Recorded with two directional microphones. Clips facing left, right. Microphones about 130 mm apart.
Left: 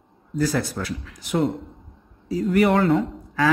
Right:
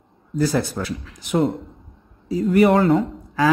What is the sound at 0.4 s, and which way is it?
A man's voice, 25° right (ahead or behind).